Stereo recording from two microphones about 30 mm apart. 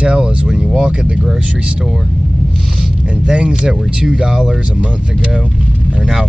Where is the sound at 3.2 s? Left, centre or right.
Right.